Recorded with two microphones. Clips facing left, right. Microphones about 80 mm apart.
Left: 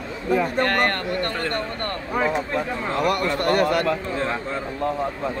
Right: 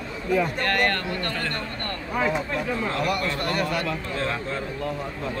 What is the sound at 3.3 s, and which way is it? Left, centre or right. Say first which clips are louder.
Speech: left 6 dB; left.